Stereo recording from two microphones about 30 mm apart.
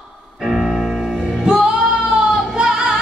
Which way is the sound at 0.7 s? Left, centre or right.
Centre.